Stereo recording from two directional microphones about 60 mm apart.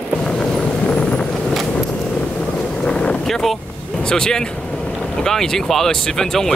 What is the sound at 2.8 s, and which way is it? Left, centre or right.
Boat, centre.